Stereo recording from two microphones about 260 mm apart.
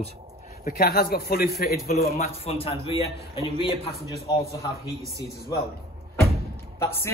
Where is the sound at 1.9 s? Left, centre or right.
Left.